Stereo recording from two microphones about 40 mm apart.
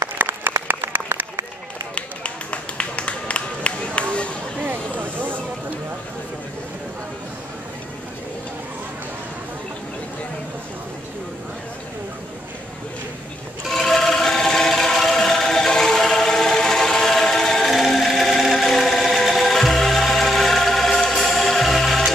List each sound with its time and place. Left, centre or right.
0.2 s applause: right
2.0 s run: left
4.6 s vehicle: right
13.7 s a sound: centre
17.6 s music: centre